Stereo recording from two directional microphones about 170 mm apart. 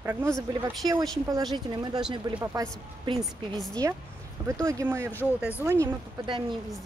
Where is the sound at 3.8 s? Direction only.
20° right (ahead or behind).